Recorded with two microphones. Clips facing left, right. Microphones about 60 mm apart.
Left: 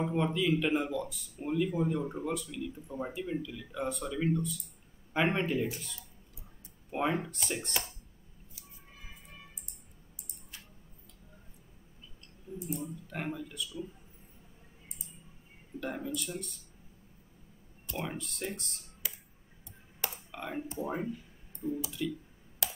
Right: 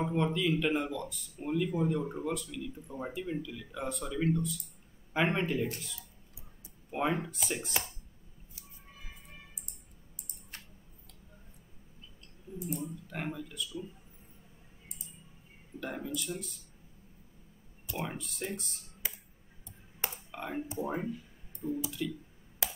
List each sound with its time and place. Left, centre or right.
0.0 s speech: centre
6.9 s speech: centre
12.6 s speech: centre
15.8 s speech: centre
17.8 s speech: centre
20.2 s speech: centre
22.6 s a sound: right